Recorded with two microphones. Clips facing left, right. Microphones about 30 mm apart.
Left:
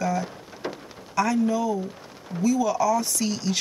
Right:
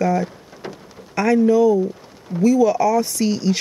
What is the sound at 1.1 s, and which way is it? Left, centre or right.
Speech, right.